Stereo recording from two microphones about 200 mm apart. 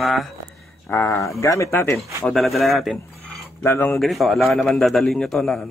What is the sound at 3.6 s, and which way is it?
Speech, 10° left (ahead or behind).